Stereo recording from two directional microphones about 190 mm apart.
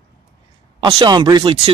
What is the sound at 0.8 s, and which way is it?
Speech, 25° right (ahead or behind).